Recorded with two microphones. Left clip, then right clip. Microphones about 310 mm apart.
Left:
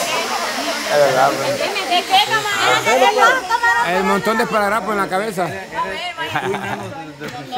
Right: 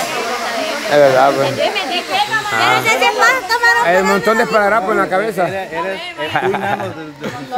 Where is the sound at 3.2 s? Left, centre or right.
Right.